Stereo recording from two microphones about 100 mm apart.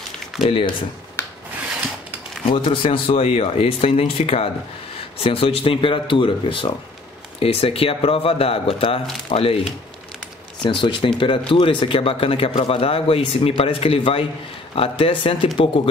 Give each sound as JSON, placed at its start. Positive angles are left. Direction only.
{"t": 2.5, "sound": "speech", "side_deg": 60}
{"t": 7.3, "sound": "speech", "side_deg": 70}
{"t": 10.6, "sound": "speech", "side_deg": 55}